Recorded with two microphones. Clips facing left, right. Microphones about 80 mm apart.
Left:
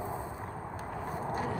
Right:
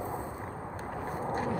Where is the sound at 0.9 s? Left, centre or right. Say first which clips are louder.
Right 2 dB; right.